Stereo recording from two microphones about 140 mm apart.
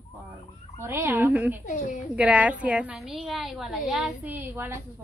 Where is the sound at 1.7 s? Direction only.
65° left (ahead or behind).